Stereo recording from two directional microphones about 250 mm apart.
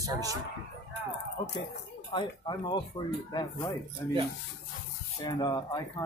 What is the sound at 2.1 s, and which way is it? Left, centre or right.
Speech, centre.